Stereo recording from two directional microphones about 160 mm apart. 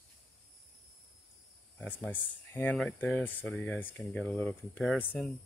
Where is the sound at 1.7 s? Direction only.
10° left (ahead or behind).